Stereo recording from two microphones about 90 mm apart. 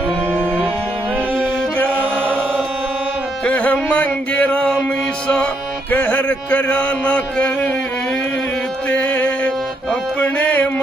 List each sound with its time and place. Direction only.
0.3 s music: 20° right (ahead or behind)
3.4 s music: 20° left (ahead or behind)
5.9 s a sound: 20° left (ahead or behind)
8.8 s music: 15° left (ahead or behind)